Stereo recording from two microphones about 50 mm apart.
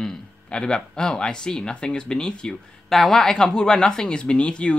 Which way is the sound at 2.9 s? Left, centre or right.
Centre.